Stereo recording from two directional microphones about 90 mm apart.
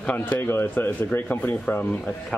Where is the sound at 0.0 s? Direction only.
15° left (ahead or behind).